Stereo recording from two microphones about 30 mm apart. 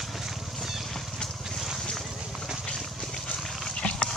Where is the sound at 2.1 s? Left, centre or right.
Right.